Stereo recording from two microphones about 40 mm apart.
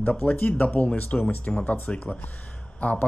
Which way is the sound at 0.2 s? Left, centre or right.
Left.